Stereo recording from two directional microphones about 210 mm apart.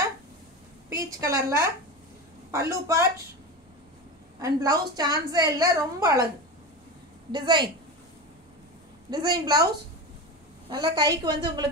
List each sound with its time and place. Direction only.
0.8 s a woman's voice: 15° right (ahead or behind)
4.4 s a woman's voice: 15° right (ahead or behind)
7.3 s a woman's voice: 20° right (ahead or behind)
9.1 s a woman's voice: 20° right (ahead or behind)
10.7 s a woman's voice: 20° right (ahead or behind)